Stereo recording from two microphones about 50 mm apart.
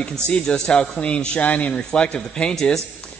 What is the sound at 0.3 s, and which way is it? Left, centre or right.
A man's voice, centre.